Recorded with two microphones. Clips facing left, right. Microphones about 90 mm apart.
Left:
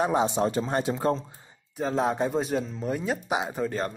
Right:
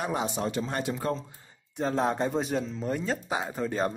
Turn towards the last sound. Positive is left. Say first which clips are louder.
# left 2 dB
turn(degrees=0)  # may be behind; listen again after turning